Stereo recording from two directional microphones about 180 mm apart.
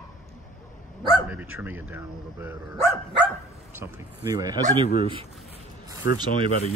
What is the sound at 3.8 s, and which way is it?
Speech, 20° right (ahead or behind).